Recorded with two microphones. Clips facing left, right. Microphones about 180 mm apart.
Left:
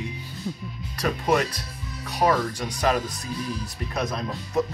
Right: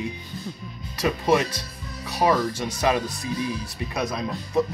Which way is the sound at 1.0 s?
5° right (ahead or behind).